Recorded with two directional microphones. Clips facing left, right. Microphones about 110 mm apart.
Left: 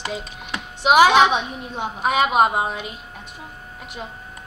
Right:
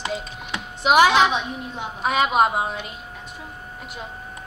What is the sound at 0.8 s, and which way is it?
Speech, 5° left (ahead or behind).